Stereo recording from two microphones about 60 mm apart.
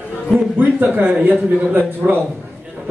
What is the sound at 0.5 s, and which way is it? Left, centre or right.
A man's voice, right.